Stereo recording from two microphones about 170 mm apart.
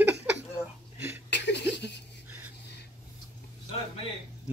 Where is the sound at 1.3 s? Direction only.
90° left.